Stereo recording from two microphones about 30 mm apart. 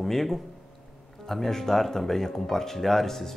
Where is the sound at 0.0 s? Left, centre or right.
Centre.